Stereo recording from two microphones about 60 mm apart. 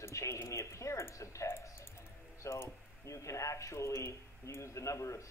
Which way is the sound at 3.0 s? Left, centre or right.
Left.